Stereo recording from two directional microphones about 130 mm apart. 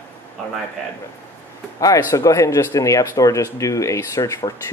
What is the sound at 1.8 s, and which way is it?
Speech, 25° left (ahead or behind).